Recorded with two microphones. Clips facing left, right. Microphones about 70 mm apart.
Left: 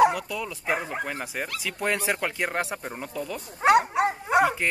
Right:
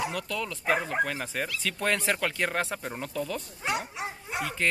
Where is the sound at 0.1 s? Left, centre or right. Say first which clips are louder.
Left 2 dB; centre.